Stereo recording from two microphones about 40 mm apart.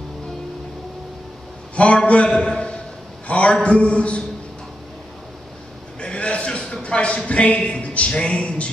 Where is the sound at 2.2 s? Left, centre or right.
Centre.